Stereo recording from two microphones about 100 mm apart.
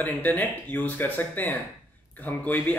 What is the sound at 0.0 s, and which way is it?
Speech, 20° left (ahead or behind).